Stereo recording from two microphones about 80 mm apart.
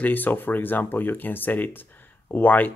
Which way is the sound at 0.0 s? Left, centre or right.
Left.